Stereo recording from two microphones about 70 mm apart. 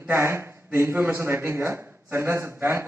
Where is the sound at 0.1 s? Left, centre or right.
Right.